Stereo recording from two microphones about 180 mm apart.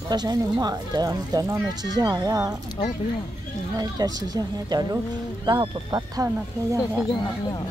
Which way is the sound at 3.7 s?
20° right (ahead or behind).